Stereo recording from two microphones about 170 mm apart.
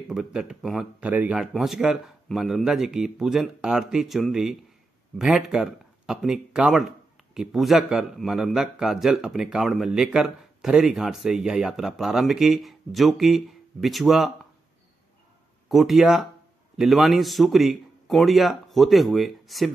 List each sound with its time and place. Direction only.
0.1 s a man's voice: 5° right (ahead or behind)
15.7 s a man's voice: centre (ahead or behind)